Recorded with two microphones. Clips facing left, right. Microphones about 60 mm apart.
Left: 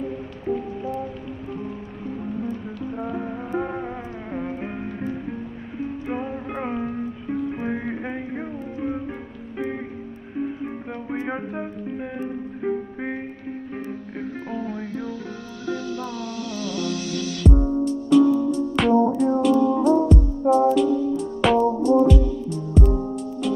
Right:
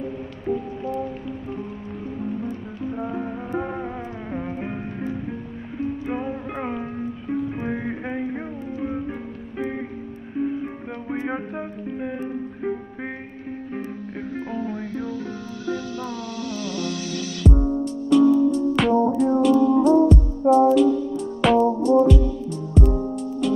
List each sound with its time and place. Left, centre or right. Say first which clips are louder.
3.0 s music: left 1 dB; centre
6.0 s music: right 1 dB; centre
11.2 s music: even; centre
16.0 s music: even; right
17.4 s music: even; centre